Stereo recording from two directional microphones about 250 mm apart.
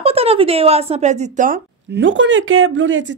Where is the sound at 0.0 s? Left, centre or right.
Right.